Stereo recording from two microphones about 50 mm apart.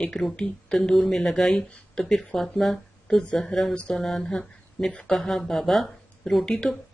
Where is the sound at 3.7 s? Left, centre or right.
Centre.